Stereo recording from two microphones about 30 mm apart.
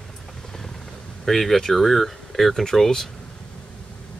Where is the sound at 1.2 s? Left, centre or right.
Centre.